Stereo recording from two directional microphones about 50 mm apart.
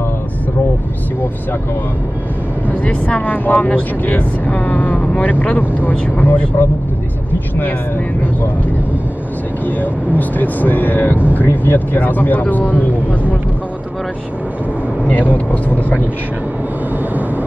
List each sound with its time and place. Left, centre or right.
2.7 s speech: left
9.7 s speech: left
15.3 s speech: left